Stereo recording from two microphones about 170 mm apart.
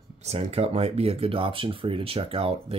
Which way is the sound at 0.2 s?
40° right (ahead or behind).